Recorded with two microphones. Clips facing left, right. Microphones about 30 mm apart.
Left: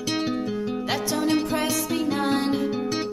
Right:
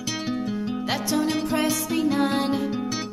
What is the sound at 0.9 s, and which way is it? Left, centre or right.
Music, centre.